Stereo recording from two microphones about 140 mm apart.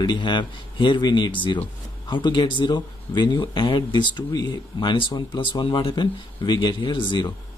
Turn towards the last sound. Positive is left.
turn(degrees=35)  # may be behind; listen again after turning